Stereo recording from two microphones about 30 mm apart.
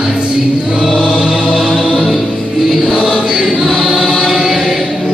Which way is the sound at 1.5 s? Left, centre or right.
Centre.